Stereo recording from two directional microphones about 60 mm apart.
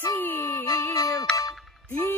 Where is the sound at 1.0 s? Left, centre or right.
Left.